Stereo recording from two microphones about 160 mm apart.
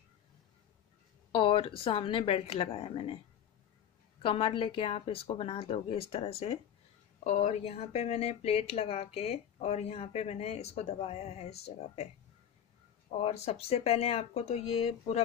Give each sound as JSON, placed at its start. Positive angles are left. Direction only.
{"t": 1.3, "sound": "speech", "side_deg": 35}
{"t": 4.2, "sound": "speech", "side_deg": 35}
{"t": 13.1, "sound": "speech", "side_deg": 40}